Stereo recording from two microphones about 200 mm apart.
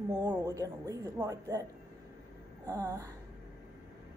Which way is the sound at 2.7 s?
15° right (ahead or behind).